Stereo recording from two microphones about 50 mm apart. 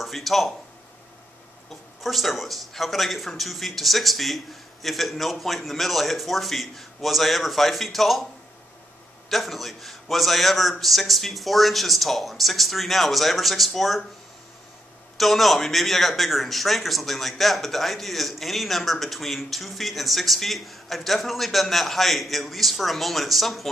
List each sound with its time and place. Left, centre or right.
0.0 s speech: centre
2.0 s a man's voice: centre
9.3 s a man's voice: centre
15.1 s a man's voice: centre